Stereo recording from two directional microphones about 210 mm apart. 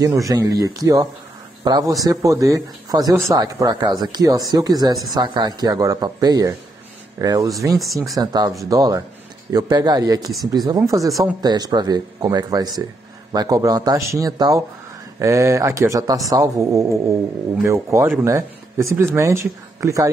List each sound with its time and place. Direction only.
0.0 s speech: 15° right (ahead or behind)